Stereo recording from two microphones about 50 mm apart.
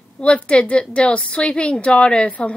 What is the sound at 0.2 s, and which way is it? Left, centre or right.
A woman's voice, left.